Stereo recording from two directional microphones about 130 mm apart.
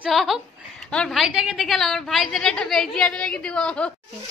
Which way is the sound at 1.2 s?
5° right (ahead or behind).